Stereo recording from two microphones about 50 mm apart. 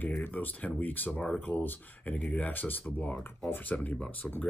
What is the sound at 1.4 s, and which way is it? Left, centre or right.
Speech, left.